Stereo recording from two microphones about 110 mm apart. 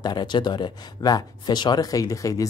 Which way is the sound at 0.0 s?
40° left (ahead or behind).